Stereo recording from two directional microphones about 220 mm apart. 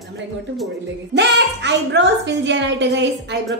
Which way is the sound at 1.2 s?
50° right (ahead or behind).